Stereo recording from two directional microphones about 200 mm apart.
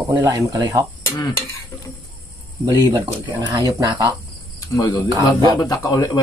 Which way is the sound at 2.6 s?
20° right (ahead or behind).